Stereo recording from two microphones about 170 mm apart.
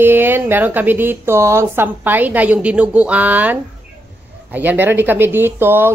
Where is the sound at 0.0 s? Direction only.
10° right (ahead or behind).